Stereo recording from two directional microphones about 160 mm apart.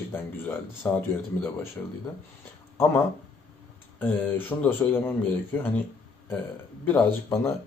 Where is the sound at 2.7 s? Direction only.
15° left (ahead or behind).